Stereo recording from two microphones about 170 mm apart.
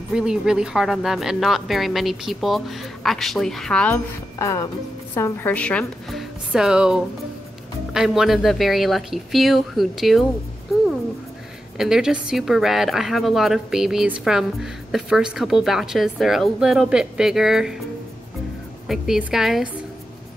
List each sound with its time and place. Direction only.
0.1 s a woman's voice: 5° right (ahead or behind)
4.4 s a woman's voice: 20° left (ahead or behind); by 10.2 s centre (ahead or behind)
11.8 s a woman's voice: 5° right (ahead or behind)
18.9 s a woman's voice: centre (ahead or behind)